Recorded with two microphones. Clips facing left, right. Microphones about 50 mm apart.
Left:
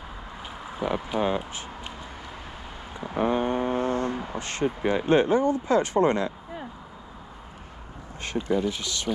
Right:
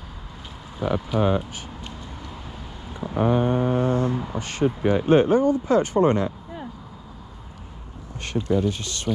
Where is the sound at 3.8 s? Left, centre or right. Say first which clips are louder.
Right 4 dB; centre.